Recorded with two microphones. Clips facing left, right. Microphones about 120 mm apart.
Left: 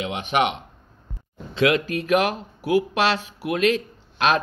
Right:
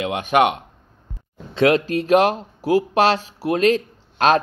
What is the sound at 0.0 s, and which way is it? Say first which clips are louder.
A man's voice: right 5 dB; 50° right (ahead or behind).